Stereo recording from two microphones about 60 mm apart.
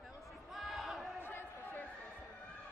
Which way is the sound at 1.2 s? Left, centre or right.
Left.